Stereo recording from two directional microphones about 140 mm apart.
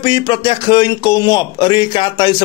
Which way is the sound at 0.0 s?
35° left (ahead or behind).